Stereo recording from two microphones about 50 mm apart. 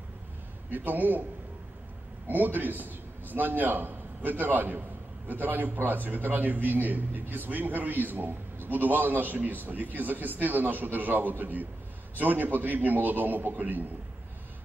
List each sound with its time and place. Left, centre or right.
0.7 s a man's voice: right
2.2 s a man's voice: right